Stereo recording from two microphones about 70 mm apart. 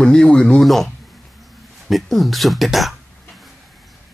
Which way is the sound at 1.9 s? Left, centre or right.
Centre.